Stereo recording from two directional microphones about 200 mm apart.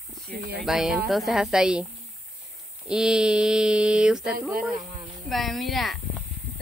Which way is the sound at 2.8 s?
5° right (ahead or behind).